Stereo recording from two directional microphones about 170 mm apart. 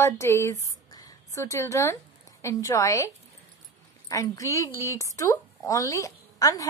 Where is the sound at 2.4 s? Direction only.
15° left (ahead or behind).